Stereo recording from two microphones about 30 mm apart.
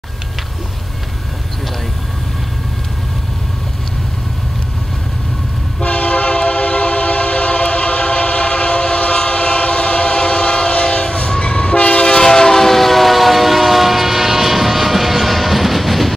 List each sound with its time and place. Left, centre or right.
5.8 s train: left; by 16.2 s centre